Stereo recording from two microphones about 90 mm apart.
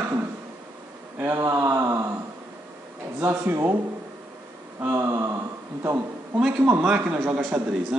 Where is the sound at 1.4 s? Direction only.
35° right (ahead or behind).